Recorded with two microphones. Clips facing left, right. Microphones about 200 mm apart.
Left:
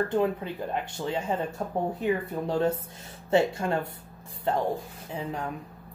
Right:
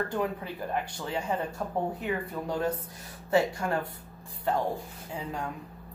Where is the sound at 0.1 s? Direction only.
25° left (ahead or behind).